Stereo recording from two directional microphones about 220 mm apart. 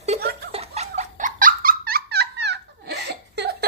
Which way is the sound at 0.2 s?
45° right (ahead or behind).